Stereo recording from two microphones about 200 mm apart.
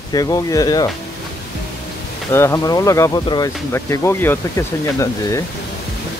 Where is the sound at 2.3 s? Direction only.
15° left (ahead or behind).